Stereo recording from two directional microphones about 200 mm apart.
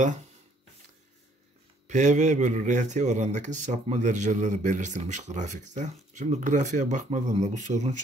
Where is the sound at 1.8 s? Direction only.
35° right (ahead or behind).